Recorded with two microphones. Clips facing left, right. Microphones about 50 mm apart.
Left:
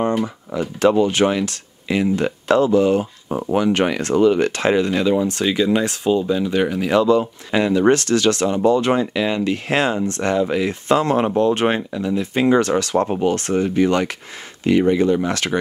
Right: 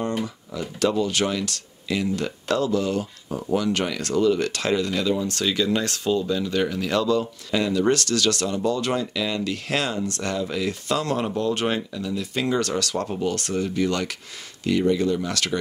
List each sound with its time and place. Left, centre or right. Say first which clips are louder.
0.0 s speech: left 7 dB; left